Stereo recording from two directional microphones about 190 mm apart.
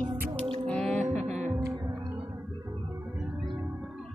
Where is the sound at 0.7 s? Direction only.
5° left (ahead or behind).